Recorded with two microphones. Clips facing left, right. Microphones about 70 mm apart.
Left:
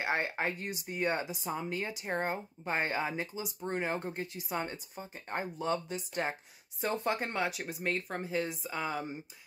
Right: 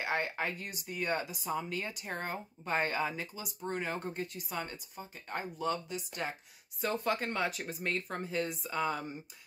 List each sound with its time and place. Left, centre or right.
0.0 s speech: left
7.3 s speech: centre